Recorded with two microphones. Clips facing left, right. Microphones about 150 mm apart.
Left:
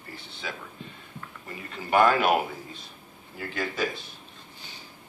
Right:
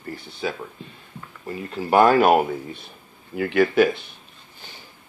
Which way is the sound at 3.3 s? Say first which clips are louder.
Right 14 dB; 70° right (ahead or behind).